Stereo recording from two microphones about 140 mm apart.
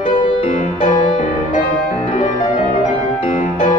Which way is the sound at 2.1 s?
60° left (ahead or behind).